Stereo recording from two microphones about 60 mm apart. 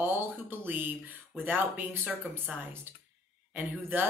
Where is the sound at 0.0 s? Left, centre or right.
Right.